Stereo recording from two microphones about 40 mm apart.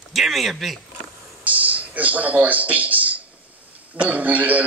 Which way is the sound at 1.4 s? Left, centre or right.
Right.